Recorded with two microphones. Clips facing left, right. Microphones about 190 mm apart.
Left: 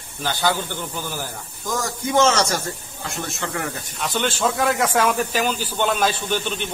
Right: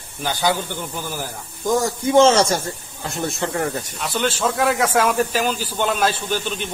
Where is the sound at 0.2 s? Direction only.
15° right (ahead or behind).